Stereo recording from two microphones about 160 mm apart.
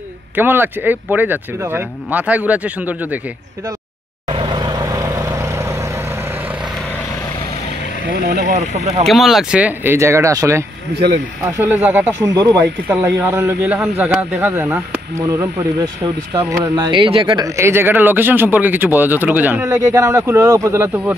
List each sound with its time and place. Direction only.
0.4 s speech: 10° right (ahead or behind)
4.3 s vehicle: 30° right (ahead or behind); by 6.7 s 10° right (ahead or behind)
8.0 s speech: 85° right
8.5 s speech: 45° right (ahead or behind)
9.0 s speech: centre (ahead or behind)
12.2 s speech: 20° right (ahead or behind)
17.5 s speech: 15° right (ahead or behind)